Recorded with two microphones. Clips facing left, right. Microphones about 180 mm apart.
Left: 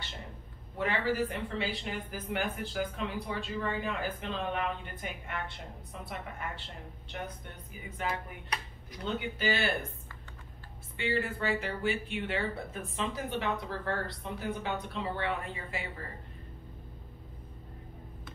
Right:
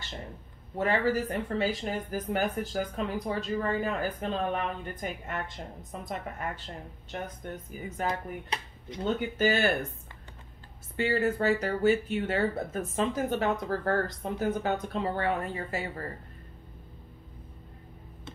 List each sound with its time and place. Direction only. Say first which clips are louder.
0.7 s a woman's voice: right 4 dB; 45° right (ahead or behind)
8.1 s speech: right 4 dB; 25° right (ahead or behind)
9.0 s speech: right 6 dB; 45° right (ahead or behind)
11.0 s speech: right 6 dB; 40° right (ahead or behind)